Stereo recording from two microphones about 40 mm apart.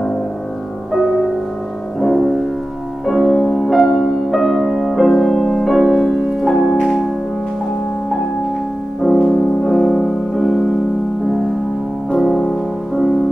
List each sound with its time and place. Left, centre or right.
0.9 s music: centre
5.1 s music: centre
5.7 s music: centre
9.0 s music: centre
12.1 s music: centre